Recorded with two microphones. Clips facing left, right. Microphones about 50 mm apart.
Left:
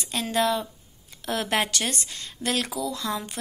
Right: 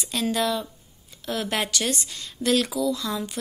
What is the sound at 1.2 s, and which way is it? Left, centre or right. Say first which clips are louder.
A woman's voice: left 1 dB; left.